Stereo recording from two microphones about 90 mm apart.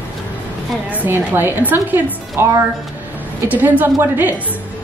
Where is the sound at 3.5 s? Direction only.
20° right (ahead or behind).